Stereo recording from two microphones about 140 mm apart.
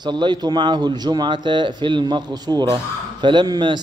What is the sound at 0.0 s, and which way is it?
A man's voice, 30° right (ahead or behind).